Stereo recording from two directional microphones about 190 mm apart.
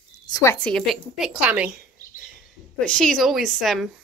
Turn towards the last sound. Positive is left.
turn(degrees=0)  # may be behind; listen again after turning